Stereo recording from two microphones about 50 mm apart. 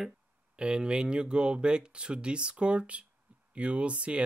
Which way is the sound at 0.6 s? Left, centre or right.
Centre.